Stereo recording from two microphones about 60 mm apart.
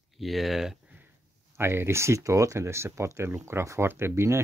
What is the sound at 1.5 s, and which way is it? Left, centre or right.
Speech, right.